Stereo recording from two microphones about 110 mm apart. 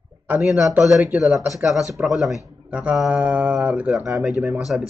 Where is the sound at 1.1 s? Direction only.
5° right (ahead or behind).